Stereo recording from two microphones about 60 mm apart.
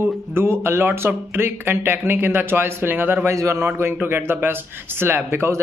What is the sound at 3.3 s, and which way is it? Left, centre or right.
Speech, right.